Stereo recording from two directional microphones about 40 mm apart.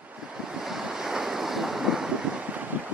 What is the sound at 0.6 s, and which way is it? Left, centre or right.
Waves, centre.